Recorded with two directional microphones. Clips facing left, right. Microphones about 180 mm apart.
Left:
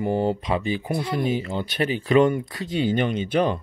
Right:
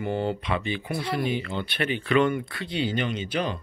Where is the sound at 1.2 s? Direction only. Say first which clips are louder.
Left 3 dB; 40° left (ahead or behind).